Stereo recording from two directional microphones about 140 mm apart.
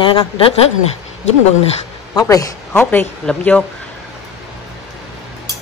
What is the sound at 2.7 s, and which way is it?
Speech, 15° left (ahead or behind).